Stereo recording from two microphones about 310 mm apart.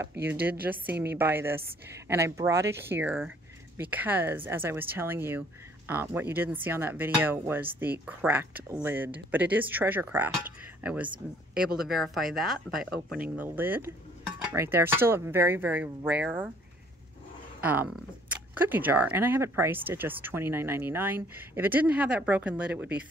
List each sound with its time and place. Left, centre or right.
0.2 s speech: right
0.7 s speech: centre
17.6 s speech: centre